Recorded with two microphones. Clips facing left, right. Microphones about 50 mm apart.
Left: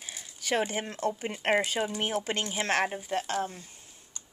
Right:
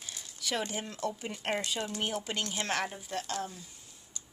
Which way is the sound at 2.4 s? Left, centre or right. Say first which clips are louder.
Left 3 dB; centre.